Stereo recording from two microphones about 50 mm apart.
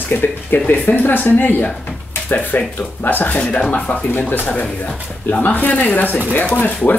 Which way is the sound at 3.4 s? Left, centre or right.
Centre.